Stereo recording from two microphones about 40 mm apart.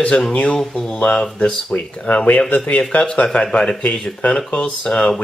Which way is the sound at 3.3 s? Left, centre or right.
Centre.